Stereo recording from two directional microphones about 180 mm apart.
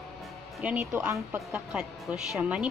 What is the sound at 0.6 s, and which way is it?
Speech, 10° right (ahead or behind).